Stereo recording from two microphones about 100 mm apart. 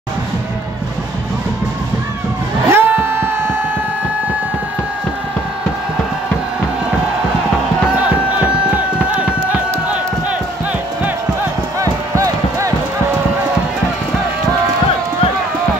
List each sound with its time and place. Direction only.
2.7 s music: 20° right (ahead or behind)
8.4 s crowd: 15° right (ahead or behind)
11.8 s music: 35° right (ahead or behind)